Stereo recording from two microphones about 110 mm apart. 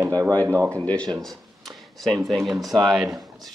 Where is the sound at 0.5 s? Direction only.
25° right (ahead or behind).